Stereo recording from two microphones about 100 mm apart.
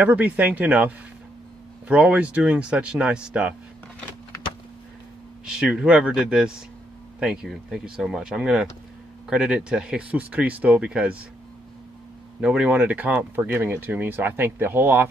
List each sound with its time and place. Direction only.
0.0 s speech: 15° right (ahead or behind)
5.4 s speech: 5° right (ahead or behind)
12.4 s speech: 10° right (ahead or behind)